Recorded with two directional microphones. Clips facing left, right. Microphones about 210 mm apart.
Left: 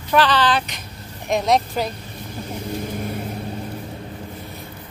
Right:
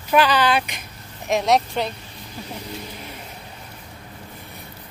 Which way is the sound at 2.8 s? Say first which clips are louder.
Left 10 dB; 50° left (ahead or behind).